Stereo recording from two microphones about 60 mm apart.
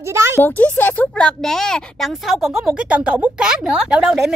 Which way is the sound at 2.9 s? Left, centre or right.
Centre.